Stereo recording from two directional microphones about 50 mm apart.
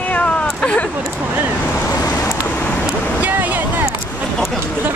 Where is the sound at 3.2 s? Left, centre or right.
Right.